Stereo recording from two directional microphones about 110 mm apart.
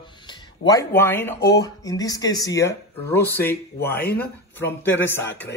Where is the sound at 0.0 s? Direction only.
45° left (ahead or behind).